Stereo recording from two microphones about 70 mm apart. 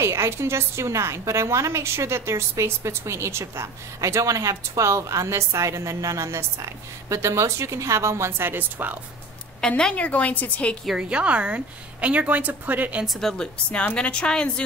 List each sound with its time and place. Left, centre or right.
0.0 s a woman's voice: right
9.6 s a woman's voice: centre
10.9 s a woman's voice: centre
13.0 s speech: centre
13.4 s a woman's voice: centre